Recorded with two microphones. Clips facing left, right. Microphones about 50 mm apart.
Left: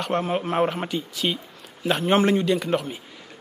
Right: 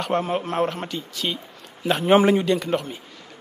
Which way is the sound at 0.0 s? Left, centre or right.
Centre.